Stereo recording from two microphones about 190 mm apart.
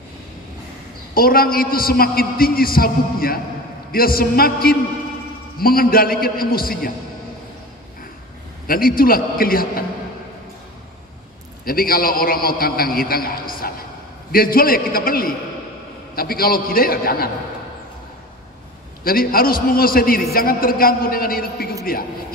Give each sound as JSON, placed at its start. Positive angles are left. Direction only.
{"t": 1.1, "sound": "a man's voice", "side_deg": 50}
{"t": 8.6, "sound": "a man's voice", "side_deg": 50}
{"t": 11.6, "sound": "a man's voice", "side_deg": 50}
{"t": 19.0, "sound": "a man's voice", "side_deg": 50}